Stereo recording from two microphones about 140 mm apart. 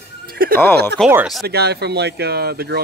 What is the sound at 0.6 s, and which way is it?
Speech, 15° left (ahead or behind).